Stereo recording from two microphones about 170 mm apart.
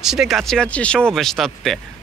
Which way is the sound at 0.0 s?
5° right (ahead or behind).